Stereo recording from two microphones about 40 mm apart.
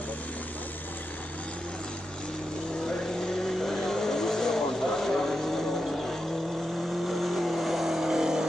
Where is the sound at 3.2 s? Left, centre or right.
Centre.